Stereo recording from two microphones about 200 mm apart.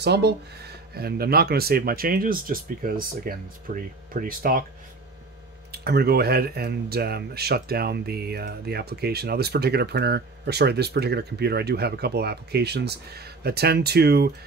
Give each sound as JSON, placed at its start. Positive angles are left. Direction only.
{"t": 0.0, "sound": "speech", "side_deg": -55}
{"t": 5.7, "sound": "speech", "side_deg": -55}